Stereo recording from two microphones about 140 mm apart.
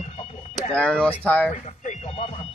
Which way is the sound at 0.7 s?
5° left (ahead or behind).